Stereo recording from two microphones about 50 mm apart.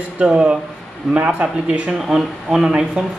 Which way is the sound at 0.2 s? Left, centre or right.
Centre.